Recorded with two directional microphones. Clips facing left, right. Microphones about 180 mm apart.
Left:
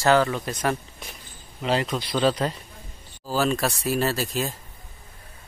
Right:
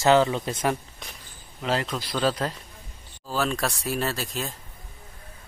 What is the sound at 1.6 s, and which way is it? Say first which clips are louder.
Speech: left 2 dB; centre (ahead or behind).